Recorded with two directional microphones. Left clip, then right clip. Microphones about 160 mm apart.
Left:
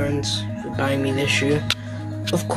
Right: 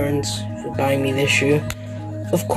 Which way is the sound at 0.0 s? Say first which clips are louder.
Right 1 dB; 20° right (ahead or behind).